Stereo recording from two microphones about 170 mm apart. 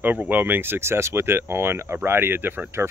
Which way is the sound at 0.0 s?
10° right (ahead or behind).